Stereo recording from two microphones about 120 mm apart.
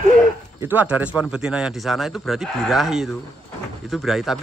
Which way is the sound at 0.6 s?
15° right (ahead or behind).